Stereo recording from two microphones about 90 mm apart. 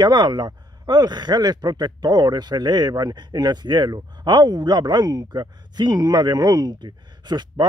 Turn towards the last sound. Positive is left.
turn(degrees=-55)  # may be behind; listen again after turning